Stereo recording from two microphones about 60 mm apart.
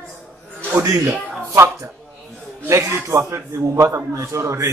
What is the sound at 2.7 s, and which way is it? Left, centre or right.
A man's voice, right.